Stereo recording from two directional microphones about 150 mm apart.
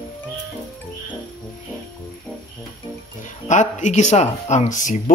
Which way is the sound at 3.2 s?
55° left (ahead or behind).